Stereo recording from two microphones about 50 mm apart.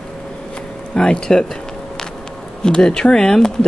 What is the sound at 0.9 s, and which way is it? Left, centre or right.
Speech, centre.